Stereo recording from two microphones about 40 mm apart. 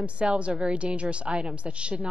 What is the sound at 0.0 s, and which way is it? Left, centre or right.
A woman's voice, right.